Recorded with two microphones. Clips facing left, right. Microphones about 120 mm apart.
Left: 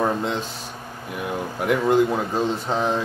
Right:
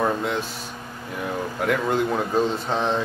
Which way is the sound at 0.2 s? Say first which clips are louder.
Even; 25° left (ahead or behind).